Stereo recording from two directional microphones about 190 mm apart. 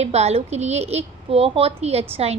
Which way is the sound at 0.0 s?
35° right (ahead or behind).